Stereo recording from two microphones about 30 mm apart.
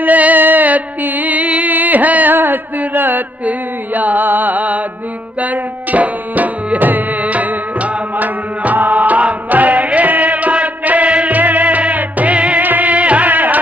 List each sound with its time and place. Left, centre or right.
0.0 s music: right
1.7 s a sound: right
5.4 s tabla: right
7.2 s music: right
12.6 s music: right
12.9 s music: right
13.3 s music: right